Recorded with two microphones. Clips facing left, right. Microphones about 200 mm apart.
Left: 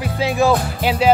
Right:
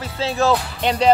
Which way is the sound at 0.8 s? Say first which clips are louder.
Even; 5° left (ahead or behind).